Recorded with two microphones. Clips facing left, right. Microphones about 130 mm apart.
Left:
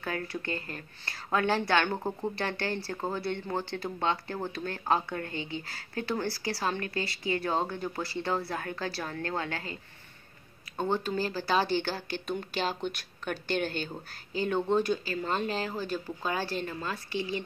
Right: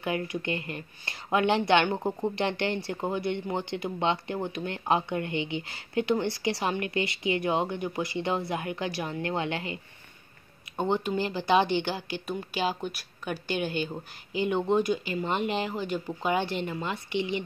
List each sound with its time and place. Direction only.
0.0 s speech: 20° right (ahead or behind)
10.8 s speech: 15° right (ahead or behind)